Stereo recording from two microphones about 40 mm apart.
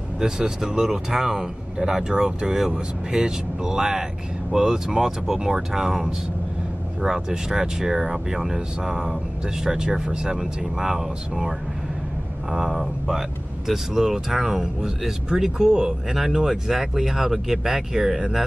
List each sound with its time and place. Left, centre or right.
0.2 s speech: centre
10.8 s speech: centre
12.7 s speech: centre
13.7 s speech: centre